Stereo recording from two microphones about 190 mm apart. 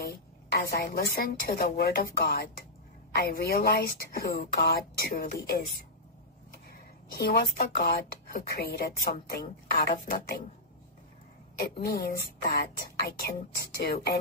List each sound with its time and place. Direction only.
0.0 s a woman's voice: 55° left (ahead or behind)
7.2 s speech: 50° left (ahead or behind)
11.5 s speech: 50° left (ahead or behind)
13.8 s speech: 55° left (ahead or behind)